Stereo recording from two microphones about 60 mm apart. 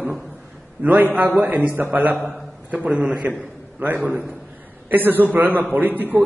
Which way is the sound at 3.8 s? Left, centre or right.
Right.